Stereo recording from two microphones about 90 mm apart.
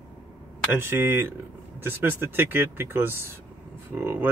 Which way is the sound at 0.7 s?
25° right (ahead or behind).